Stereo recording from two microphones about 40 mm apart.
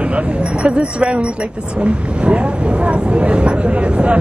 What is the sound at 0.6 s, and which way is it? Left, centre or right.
Speech, right.